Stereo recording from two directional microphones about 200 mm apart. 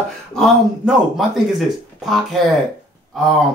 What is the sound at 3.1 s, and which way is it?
Speech, centre (ahead or behind).